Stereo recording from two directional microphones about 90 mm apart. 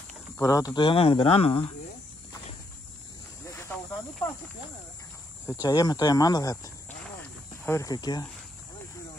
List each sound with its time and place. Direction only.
0.4 s speech: 40° left (ahead or behind)
0.7 s speech: 80° left
5.5 s speech: 45° left (ahead or behind)
7.9 s speech: 45° left (ahead or behind)